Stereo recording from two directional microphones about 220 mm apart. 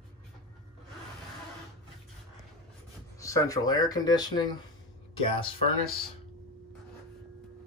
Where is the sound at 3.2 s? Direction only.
15° left (ahead or behind).